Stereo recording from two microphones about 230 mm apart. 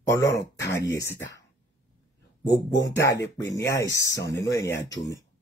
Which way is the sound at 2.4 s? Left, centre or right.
Left.